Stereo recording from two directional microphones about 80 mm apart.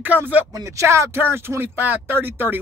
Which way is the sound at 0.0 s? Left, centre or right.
Right.